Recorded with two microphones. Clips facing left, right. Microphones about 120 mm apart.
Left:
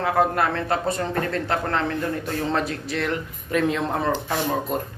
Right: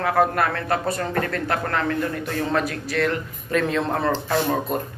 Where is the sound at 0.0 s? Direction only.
20° left (ahead or behind).